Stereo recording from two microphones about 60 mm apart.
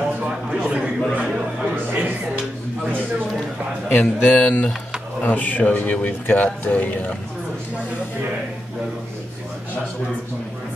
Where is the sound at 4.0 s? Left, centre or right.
Left.